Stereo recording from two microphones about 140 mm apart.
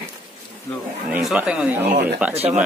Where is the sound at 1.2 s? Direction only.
5° right (ahead or behind).